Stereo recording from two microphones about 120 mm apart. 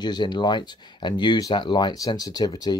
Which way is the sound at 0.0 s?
35° left (ahead or behind).